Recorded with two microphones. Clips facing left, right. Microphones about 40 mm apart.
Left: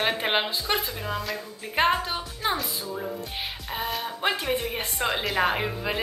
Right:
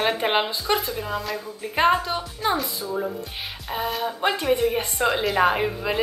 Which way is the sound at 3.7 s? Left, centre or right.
Centre.